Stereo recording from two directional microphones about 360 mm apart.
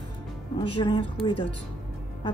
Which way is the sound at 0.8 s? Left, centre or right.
Centre.